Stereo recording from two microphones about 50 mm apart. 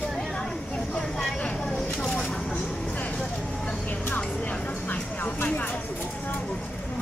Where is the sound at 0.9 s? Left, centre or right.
Centre.